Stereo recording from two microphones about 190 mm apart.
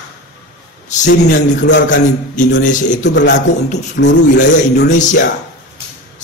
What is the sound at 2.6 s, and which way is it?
Speech, 40° left (ahead or behind).